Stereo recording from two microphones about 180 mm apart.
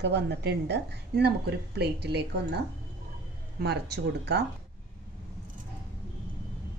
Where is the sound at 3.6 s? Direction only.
65° right (ahead or behind).